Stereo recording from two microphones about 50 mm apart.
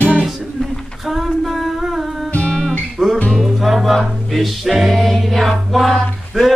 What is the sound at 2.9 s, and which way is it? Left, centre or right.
Music, centre.